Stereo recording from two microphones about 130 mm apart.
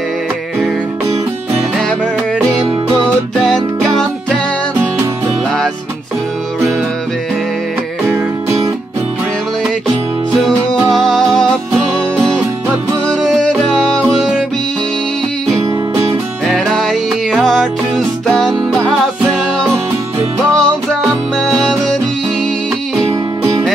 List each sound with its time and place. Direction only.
8.0 s music: 20° right (ahead or behind)
10.4 s music: 5° left (ahead or behind)
13.2 s music: 5° left (ahead or behind)
16.4 s music: 5° left (ahead or behind)
20.2 s music: 20° right (ahead or behind)
21.4 s music: 5° left (ahead or behind)
23.0 s music: 20° right (ahead or behind)